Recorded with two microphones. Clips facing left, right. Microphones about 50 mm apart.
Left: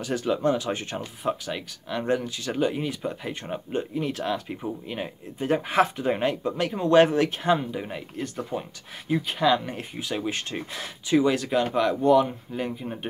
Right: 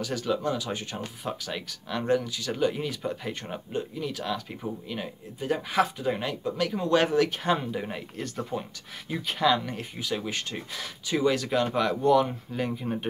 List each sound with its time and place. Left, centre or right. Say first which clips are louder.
0.0 s speech: left 4 dB; left
0.9 s speech: left 5 dB; left
2.0 s speech: right 1 dB; left
2.5 s speech: left 1 dB; centre
3.0 s speech: left 1 dB; centre
3.7 s speech: left 4 dB; left
5.5 s speech: left 3 dB; left
6.1 s speech: left 4 dB; left
7.4 s speech: left 3 dB; centre
8.2 s speech: left 2 dB; centre
9.7 s speech: left 1 dB; left; by 13.0 s centre